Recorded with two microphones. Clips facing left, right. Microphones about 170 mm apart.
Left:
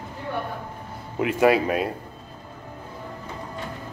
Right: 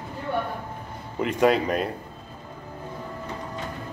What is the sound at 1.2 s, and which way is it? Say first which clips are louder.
Speech: left 2 dB; 5° left (ahead or behind).